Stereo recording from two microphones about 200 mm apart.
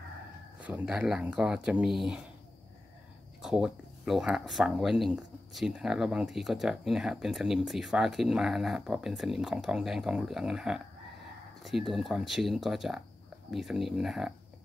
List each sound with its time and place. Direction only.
0.6 s speech: 5° right (ahead or behind)
3.4 s speech: 5° right (ahead or behind)